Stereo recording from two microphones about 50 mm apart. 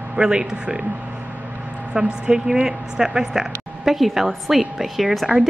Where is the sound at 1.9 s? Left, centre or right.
Centre.